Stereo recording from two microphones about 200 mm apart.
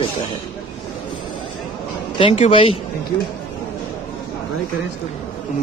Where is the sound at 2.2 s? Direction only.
30° left (ahead or behind).